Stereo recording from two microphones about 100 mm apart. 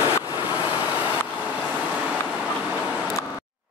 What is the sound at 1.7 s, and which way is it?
Vehicle, 15° right (ahead or behind).